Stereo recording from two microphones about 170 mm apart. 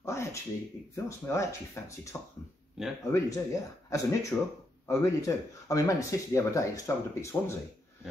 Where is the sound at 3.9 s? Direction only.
15° left (ahead or behind).